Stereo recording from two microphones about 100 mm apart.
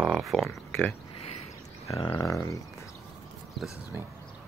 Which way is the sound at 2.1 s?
30° left (ahead or behind).